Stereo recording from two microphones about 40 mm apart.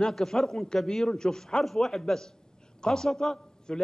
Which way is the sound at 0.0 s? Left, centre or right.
Centre.